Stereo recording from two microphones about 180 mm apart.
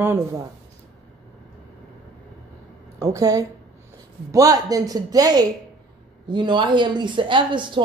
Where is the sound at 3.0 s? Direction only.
20° right (ahead or behind).